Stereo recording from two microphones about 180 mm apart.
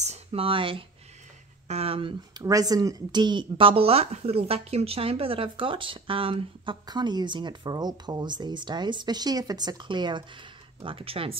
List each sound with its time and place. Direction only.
0.0 s speech: 35° right (ahead or behind)